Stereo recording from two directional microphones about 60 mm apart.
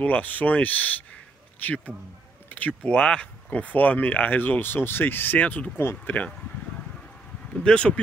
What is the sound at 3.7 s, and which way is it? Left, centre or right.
Speech, left.